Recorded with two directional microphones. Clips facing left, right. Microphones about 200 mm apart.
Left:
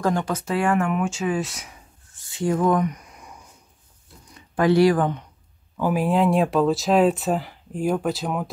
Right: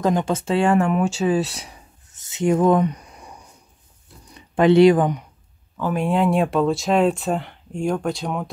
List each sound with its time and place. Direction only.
0.0 s speech: 20° right (ahead or behind)
2.1 s a sound: 20° right (ahead or behind)
4.3 s speech: 20° right (ahead or behind)
5.8 s speech: 5° left (ahead or behind)